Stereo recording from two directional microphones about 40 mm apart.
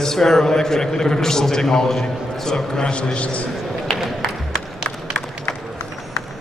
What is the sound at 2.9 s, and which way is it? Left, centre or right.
Speech, left.